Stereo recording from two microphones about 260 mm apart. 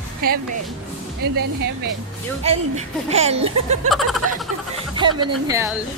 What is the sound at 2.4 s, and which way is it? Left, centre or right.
Speech, right.